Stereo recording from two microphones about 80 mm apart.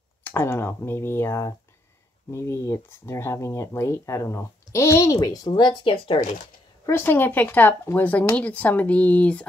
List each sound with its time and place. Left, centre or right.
0.2 s speech: left
6.9 s speech: left